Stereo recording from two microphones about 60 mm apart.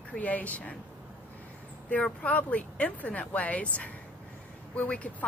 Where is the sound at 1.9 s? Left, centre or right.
Left.